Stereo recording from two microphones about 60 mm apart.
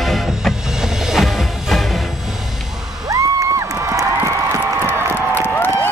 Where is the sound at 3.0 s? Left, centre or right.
Right.